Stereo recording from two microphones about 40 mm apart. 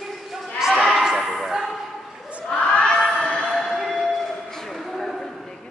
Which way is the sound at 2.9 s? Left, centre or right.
Centre.